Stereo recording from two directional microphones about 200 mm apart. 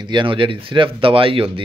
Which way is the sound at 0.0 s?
25° right (ahead or behind).